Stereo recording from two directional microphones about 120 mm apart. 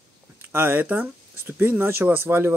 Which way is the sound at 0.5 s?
20° right (ahead or behind).